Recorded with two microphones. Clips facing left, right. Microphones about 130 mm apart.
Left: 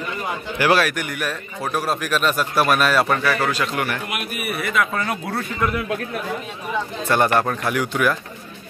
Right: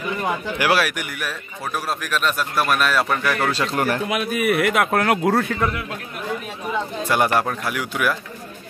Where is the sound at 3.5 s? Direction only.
30° right (ahead or behind).